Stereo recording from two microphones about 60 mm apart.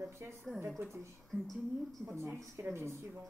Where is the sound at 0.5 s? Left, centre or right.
Right.